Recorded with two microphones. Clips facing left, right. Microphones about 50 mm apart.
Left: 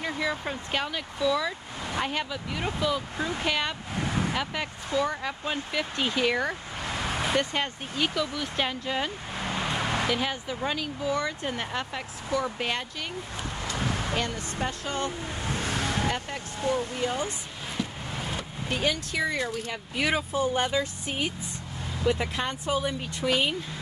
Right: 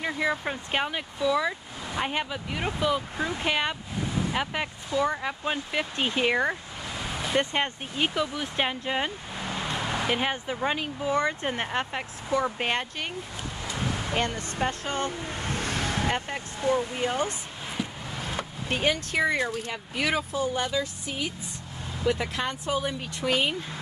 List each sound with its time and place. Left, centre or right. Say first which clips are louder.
0.0 s speech: right 2 dB; right
6.8 s vehicle: left 3 dB; left
7.3 s speech: right 1 dB; right
9.5 s vehicle: left 1 dB; left
10.0 s speech: right 1 dB; right
14.1 s speech: right 2 dB; right
15.6 s vehicle: even; left
15.9 s speech: right 1 dB; right
18.3 s speech: right 3 dB; right
19.7 s speech: even; centre
20.3 s speech: left 2 dB; left
22.2 s speech: even; centre
22.8 s speech: even; centre